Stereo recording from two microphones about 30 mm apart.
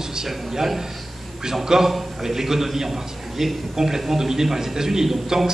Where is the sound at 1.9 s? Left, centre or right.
Centre.